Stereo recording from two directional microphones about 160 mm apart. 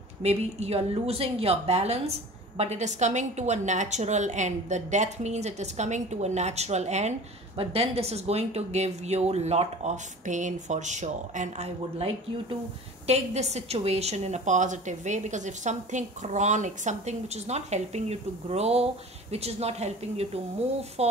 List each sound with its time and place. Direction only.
0.2 s a woman's voice: 40° right (ahead or behind)